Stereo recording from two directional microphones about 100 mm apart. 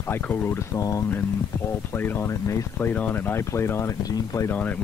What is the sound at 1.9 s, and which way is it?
Speech, 20° left (ahead or behind).